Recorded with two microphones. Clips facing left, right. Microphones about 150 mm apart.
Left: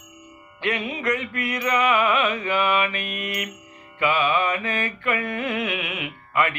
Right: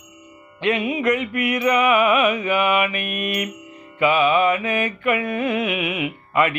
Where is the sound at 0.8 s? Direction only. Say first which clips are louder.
Right 5 dB; 15° right (ahead or behind).